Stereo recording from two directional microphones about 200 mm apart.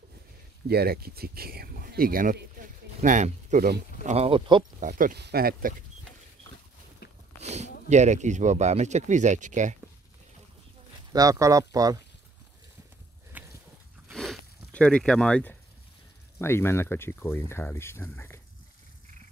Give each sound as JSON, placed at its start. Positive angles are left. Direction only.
{"t": 0.7, "sound": "speech", "side_deg": -50}
{"t": 4.7, "sound": "speech", "side_deg": -40}
{"t": 7.3, "sound": "speech", "side_deg": -35}
{"t": 11.1, "sound": "speech", "side_deg": -15}
{"t": 13.3, "sound": "a sound", "side_deg": -10}
{"t": 14.1, "sound": "zipper", "side_deg": 0}
{"t": 16.3, "sound": "speech", "side_deg": 10}